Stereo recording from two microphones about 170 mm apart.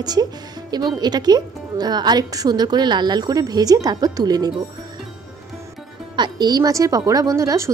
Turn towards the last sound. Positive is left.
turn(degrees=-15)  # may be behind; listen again after turning